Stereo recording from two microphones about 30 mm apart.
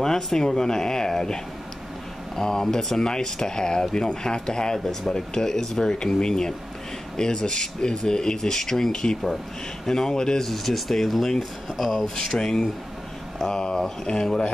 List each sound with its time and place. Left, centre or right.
0.0 s speech: centre
4.7 s speech: centre
5.1 s speech: centre
10.4 s speech: centre
11.8 s speech: centre
12.3 s speech: centre
13.5 s speech: left